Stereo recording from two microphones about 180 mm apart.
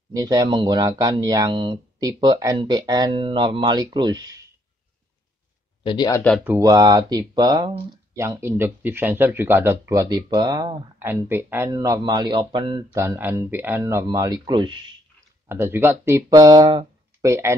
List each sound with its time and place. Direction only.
0.1 s speech: 20° right (ahead or behind)
5.9 s speech: 20° left (ahead or behind)
6.4 s speech: 15° right (ahead or behind)
11.0 s speech: 10° right (ahead or behind); by 12.8 s 25° right (ahead or behind)
12.9 s speech: 15° right (ahead or behind)
15.4 s speech: 15° right (ahead or behind)